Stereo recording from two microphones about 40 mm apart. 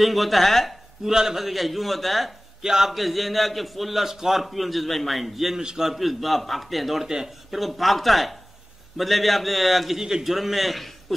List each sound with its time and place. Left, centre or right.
0.0 s a man's voice: centre
1.0 s a man's voice: centre
2.6 s a man's voice: centre
2.9 s a man's voice: centre
5.6 s a man's voice: centre
5.9 s a man's voice: centre
9.9 s a man's voice: centre
10.3 s a man's voice: centre